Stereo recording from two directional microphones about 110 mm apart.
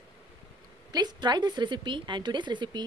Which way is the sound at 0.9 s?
40° right (ahead or behind).